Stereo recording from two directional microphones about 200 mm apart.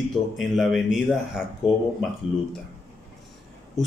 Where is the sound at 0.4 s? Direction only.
Centre (ahead or behind).